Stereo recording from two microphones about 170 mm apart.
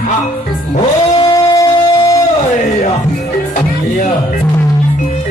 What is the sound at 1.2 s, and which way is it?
Music, 25° left (ahead or behind).